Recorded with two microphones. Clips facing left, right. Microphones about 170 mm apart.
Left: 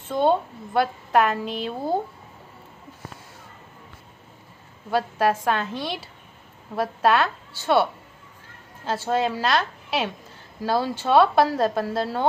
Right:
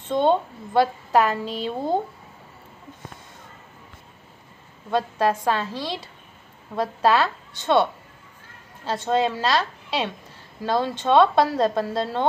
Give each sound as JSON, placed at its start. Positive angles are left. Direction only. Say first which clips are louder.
{"t": 0.1, "sound": "a woman's voice", "louder": "right 1 dB", "side_deg": 5}
{"t": 1.4, "sound": "a woman's voice", "louder": "even", "side_deg": -30}
{"t": 1.7, "sound": "a woman's voice", "louder": "right 2 dB", "side_deg": 5}
{"t": 4.9, "sound": "a woman's voice", "louder": "even", "side_deg": 0}